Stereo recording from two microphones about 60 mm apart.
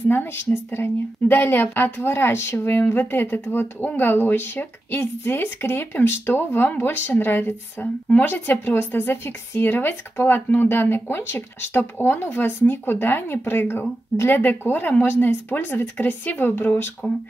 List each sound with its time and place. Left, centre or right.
0.1 s speech: left